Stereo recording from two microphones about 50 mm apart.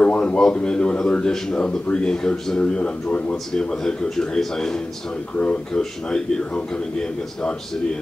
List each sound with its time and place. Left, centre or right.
0.0 s a sound: left
0.6 s a man's voice: centre
3.5 s speech: centre
5.3 s a man's voice: left
5.7 s a man's voice: centre